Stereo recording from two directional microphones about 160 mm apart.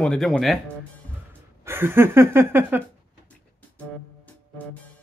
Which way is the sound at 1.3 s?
15° right (ahead or behind).